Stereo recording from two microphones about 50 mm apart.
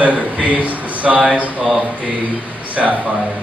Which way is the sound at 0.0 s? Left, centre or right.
Right.